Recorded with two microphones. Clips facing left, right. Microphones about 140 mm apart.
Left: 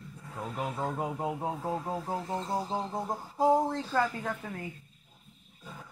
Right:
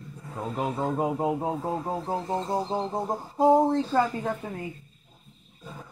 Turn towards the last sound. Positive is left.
turn(degrees=-25)  # may be behind; listen again after turning